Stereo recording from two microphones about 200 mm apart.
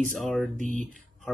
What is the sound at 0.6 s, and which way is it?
Speech, 40° right (ahead or behind).